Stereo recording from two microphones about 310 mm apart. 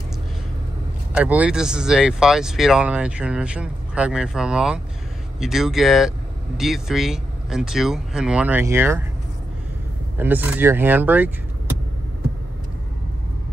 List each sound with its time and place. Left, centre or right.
1.1 s speech: centre
10.1 s speech: centre